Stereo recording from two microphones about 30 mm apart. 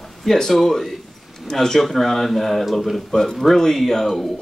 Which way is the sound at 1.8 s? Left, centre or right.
Centre.